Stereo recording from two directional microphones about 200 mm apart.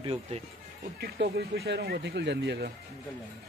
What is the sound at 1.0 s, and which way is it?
Speech, 50° right (ahead or behind).